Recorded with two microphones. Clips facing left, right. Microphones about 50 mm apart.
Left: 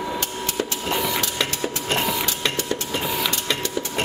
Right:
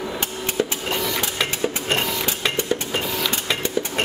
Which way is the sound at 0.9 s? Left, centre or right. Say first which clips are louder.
Left 1 dB; centre.